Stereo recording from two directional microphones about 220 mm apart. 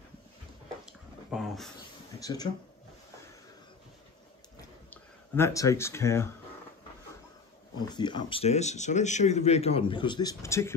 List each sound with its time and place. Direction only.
0.8 s a sound: centre (ahead or behind)
2.1 s speech: 15° left (ahead or behind)
5.3 s speech: 15° left (ahead or behind)
7.8 s speech: 20° left (ahead or behind)